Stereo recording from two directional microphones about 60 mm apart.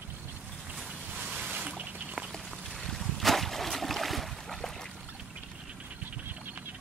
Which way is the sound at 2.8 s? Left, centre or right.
Centre.